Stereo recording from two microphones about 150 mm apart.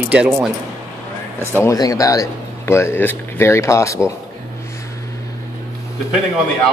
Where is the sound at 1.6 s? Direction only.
25° left (ahead or behind).